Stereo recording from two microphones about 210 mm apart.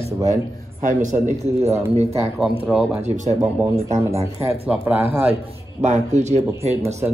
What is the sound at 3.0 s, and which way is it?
Speech, 35° right (ahead or behind).